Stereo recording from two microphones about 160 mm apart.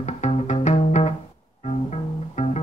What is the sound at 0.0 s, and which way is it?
Music, 45° left (ahead or behind).